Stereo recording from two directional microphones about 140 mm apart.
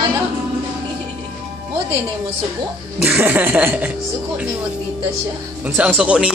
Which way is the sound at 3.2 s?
10° right (ahead or behind).